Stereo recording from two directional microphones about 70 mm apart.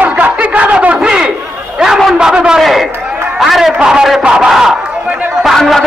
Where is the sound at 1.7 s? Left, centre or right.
Centre.